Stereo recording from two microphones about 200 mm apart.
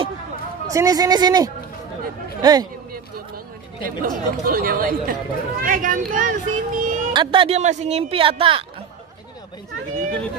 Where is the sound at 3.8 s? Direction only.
45° right (ahead or behind).